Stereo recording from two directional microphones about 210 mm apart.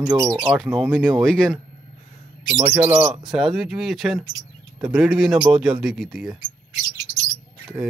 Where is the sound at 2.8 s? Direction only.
10° right (ahead or behind).